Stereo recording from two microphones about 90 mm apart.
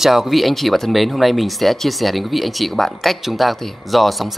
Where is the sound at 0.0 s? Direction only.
5° right (ahead or behind).